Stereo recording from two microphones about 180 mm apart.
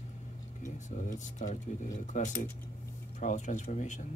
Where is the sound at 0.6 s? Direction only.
45° left (ahead or behind).